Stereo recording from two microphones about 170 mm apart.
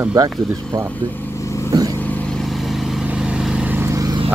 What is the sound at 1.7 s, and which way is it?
Vehicle, 20° right (ahead or behind).